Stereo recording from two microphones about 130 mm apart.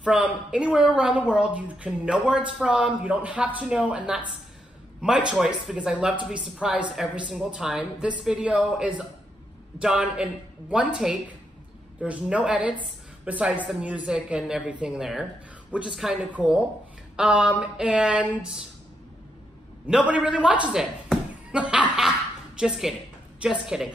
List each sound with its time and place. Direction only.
0.0 s a woman's voice: 10° right (ahead or behind)
19.9 s a woman's voice: 10° right (ahead or behind)